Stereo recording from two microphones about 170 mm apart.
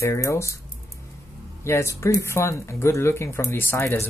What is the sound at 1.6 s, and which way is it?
Speech, 15° left (ahead or behind).